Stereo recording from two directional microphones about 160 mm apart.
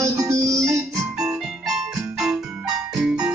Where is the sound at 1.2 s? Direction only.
5° right (ahead or behind).